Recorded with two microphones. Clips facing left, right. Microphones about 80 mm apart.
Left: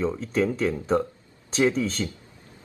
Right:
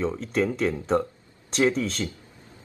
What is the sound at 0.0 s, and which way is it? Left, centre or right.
Speech, centre.